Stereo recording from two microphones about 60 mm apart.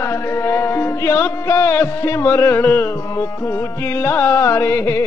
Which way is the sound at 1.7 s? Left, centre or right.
Left.